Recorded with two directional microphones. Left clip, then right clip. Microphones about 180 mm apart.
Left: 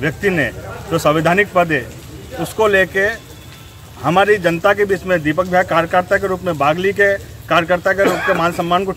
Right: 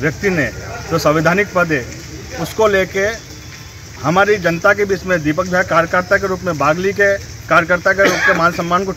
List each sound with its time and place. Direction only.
0.0 s speech: 10° left (ahead or behind)
8.1 s speech: 65° left (ahead or behind)
8.4 s speech: 10° left (ahead or behind)